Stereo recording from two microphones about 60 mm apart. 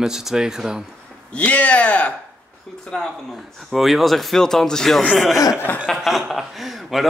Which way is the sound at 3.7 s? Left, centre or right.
Centre.